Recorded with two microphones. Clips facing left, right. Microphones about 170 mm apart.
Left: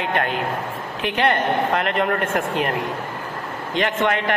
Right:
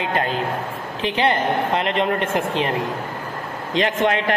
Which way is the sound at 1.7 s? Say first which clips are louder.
Even; 25° right (ahead or behind).